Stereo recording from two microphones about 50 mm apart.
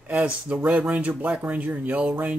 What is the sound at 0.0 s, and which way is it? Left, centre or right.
Speech, right.